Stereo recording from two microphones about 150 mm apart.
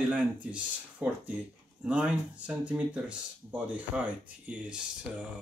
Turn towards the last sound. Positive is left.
turn(degrees=-5)  # may be behind; listen again after turning